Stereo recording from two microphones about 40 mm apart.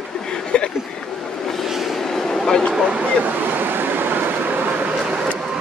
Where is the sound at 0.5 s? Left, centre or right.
Left.